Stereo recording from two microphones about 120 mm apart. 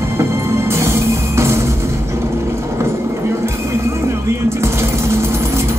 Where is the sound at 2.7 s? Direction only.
20° right (ahead or behind).